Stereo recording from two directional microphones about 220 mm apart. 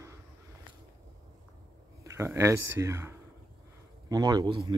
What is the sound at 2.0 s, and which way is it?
Speech, 15° right (ahead or behind).